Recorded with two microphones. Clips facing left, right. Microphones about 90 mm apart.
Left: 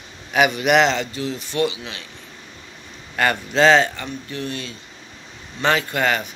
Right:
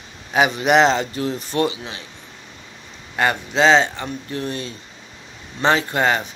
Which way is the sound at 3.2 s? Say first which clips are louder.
Even; 20° right (ahead or behind).